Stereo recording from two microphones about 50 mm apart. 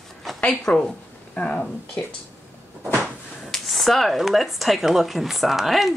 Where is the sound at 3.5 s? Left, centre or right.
Centre.